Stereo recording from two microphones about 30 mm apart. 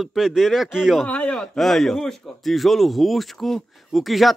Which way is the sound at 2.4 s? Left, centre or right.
Centre.